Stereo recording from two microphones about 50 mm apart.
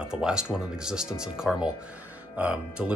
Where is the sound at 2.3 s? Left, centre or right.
Right.